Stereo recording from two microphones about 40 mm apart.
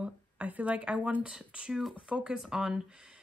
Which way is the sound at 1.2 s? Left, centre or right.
Right.